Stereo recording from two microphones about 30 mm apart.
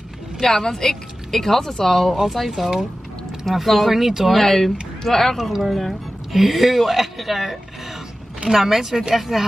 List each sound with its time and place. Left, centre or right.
0.4 s speech: centre
4.4 s speech: centre
5.4 s speech: centre
5.7 s speech: centre
8.5 s speech: centre